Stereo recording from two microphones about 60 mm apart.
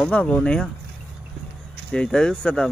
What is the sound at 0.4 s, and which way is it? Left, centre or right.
Speech, centre.